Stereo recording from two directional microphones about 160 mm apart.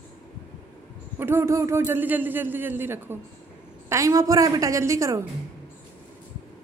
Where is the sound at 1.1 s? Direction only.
15° right (ahead or behind).